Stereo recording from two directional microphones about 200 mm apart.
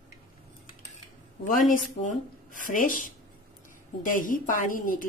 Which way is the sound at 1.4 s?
40° left (ahead or behind).